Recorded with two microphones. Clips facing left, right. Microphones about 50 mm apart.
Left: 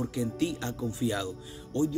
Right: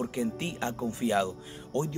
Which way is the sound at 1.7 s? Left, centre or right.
Right.